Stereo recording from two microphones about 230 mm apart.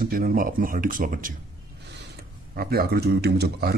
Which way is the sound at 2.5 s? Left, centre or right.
Right.